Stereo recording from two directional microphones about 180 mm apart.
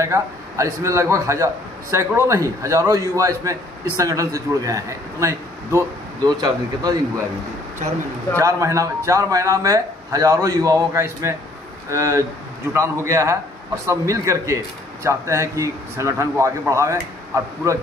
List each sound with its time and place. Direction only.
0.0 s a man's voice: 15° right (ahead or behind)
8.4 s a man's voice: 15° right (ahead or behind)